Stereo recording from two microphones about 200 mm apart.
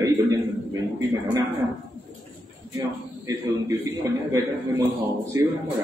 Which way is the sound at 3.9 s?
15° right (ahead or behind).